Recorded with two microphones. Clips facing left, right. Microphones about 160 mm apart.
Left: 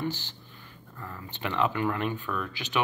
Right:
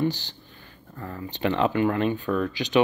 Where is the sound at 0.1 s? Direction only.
80° right.